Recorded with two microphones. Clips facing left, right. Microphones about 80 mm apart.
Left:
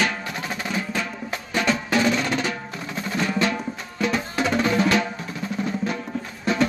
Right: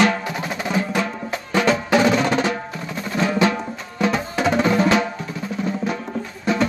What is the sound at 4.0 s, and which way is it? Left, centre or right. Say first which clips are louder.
Music: right 3 dB; right.